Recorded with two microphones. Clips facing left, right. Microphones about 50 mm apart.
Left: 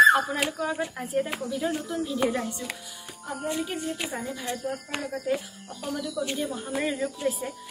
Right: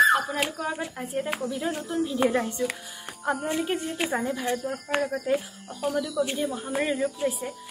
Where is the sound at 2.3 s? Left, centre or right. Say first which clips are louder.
Right 4 dB; right.